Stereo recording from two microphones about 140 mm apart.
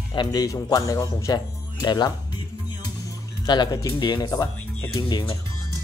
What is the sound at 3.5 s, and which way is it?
Speech, 30° left (ahead or behind).